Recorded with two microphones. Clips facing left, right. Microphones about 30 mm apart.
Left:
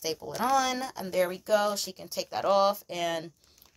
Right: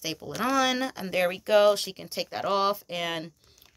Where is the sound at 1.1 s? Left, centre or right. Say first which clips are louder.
Right 3 dB; right.